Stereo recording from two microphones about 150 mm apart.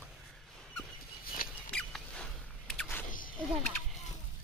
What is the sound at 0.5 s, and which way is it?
Dog, 5° left (ahead or behind).